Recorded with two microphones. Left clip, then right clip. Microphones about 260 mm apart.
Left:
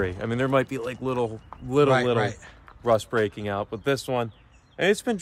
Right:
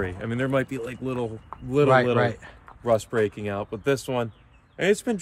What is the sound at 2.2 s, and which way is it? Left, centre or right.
Speech, centre.